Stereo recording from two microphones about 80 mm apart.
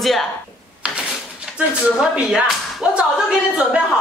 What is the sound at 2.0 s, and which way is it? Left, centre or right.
Speech, centre.